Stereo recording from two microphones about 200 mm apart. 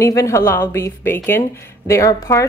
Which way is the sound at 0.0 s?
15° left (ahead or behind).